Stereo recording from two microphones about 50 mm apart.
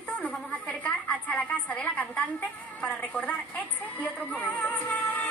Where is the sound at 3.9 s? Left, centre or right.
Left.